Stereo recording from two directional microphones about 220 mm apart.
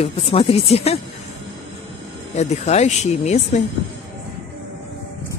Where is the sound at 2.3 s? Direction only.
30° left (ahead or behind).